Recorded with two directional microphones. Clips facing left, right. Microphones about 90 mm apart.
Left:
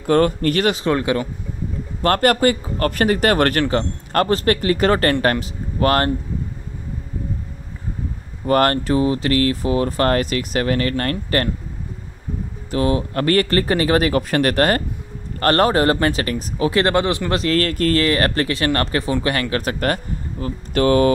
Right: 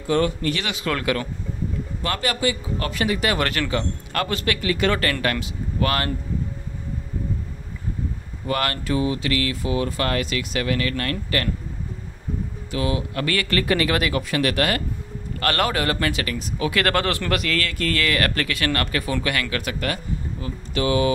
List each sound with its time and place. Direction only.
0.0 s speech: 50° left (ahead or behind)
0.8 s speech: 25° left (ahead or behind)
2.0 s speech: 50° left (ahead or behind)
8.5 s speech: 40° left (ahead or behind)
12.7 s speech: 40° left (ahead or behind); by 17.4 s 20° left (ahead or behind)
17.4 s speech: 40° left (ahead or behind)